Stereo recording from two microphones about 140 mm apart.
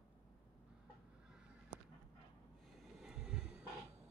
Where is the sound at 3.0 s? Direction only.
5° right (ahead or behind).